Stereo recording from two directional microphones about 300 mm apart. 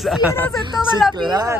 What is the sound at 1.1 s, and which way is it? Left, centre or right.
Speech, centre.